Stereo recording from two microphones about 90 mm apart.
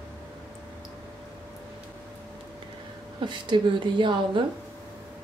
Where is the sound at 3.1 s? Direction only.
60° right (ahead or behind).